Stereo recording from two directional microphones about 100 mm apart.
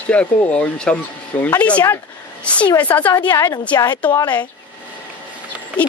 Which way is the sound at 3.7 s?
45° left (ahead or behind).